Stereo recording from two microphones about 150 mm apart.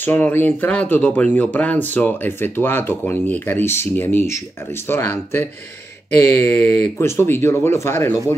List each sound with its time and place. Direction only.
0.0 s speech: 15° left (ahead or behind)